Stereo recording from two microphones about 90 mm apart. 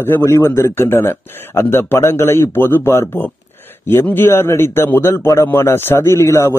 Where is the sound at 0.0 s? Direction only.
30° left (ahead or behind).